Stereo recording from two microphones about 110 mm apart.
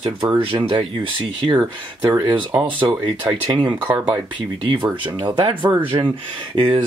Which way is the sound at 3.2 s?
45° right (ahead or behind).